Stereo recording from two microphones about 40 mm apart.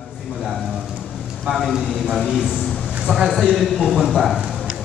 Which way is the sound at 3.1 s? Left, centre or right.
Left.